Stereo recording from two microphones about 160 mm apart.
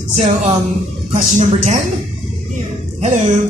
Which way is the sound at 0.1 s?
45° right (ahead or behind).